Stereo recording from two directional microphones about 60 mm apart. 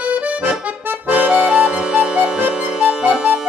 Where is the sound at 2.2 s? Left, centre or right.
Right.